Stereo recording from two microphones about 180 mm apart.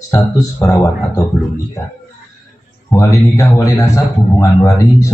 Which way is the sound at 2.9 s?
20° left (ahead or behind).